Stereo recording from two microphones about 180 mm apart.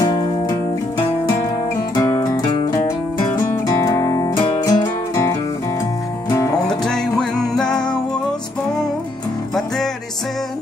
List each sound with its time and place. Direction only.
0.0 s music: 20° left (ahead or behind)
6.7 s music: 5° left (ahead or behind)